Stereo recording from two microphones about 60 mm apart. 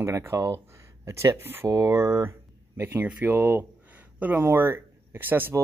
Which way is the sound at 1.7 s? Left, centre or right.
Right.